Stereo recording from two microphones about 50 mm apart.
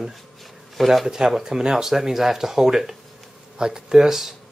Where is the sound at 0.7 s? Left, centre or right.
Centre.